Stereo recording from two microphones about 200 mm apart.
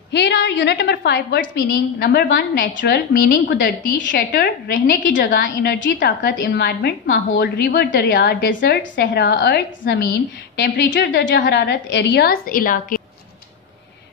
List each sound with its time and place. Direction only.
0.1 s a woman's voice: 60° left (ahead or behind)
4.3 s a woman's voice: 50° left (ahead or behind)
5.0 s a woman's voice: 60° left (ahead or behind); by 13.0 s 45° left (ahead or behind)